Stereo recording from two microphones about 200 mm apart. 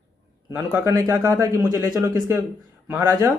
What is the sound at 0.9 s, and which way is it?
Speech, 15° right (ahead or behind).